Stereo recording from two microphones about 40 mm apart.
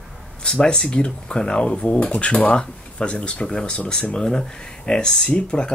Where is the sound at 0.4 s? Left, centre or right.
Left.